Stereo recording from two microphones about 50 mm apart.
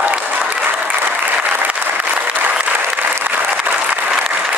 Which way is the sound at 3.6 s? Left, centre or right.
Right.